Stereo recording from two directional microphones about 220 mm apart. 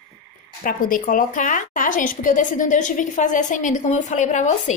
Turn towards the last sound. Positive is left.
turn(degrees=35)  # may be behind; listen again after turning